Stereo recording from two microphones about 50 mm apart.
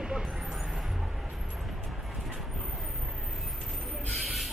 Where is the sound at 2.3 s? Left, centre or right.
Centre.